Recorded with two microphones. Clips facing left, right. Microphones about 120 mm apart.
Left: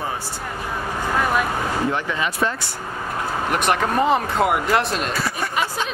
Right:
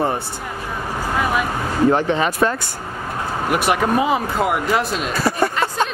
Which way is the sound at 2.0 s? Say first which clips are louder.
Right 5 dB; 40° right (ahead or behind).